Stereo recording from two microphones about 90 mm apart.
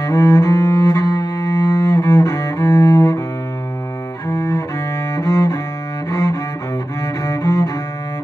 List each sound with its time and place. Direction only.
0.0 s cello: 30° left (ahead or behind)
4.3 s cello: 35° left (ahead or behind)